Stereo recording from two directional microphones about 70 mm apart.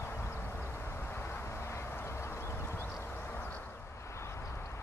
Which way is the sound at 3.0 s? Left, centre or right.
Left.